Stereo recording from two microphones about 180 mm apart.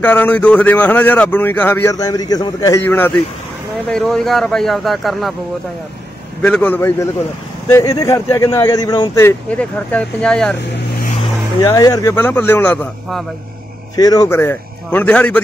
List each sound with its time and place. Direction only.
0.0 s a man's voice: 10° left (ahead or behind)
6.4 s a man's voice: 10° left (ahead or behind)
11.6 s a man's voice: 20° left (ahead or behind)
13.9 s a man's voice: 20° left (ahead or behind)